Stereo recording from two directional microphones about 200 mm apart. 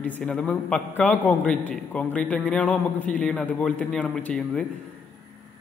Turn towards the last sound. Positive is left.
turn(degrees=5)  # may be behind; listen again after turning